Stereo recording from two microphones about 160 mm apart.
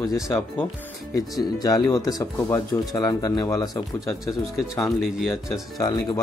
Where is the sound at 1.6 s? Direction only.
25° left (ahead or behind).